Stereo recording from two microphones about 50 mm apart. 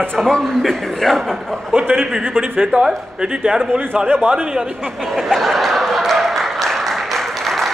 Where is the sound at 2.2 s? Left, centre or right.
Right.